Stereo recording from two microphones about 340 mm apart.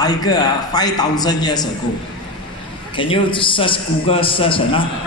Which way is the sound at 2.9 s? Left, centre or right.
Centre.